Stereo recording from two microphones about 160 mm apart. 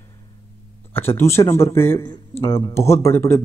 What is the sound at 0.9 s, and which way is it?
Speech, 15° left (ahead or behind).